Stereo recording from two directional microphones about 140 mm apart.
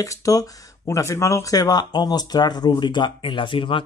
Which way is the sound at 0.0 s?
25° left (ahead or behind).